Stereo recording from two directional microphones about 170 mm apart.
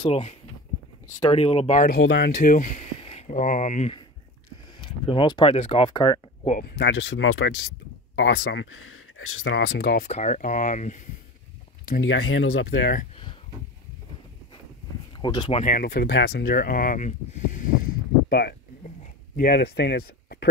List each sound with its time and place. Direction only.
0.0 s speech: 35° left (ahead or behind)
2.0 s speech: 85° left; by 2.7 s 55° left (ahead or behind)
3.0 s speech: 35° left (ahead or behind)
4.8 s speech: 30° left (ahead or behind)
6.8 s speech: 90° left
9.6 s speech: 75° left (ahead or behind)
10.0 s speech: 45° left (ahead or behind)
11.8 s speech: 75° left (ahead or behind)
15.1 s speech: 25° left (ahead or behind)
15.6 s speech: 60° left (ahead or behind)
19.3 s speech: 60° left (ahead or behind)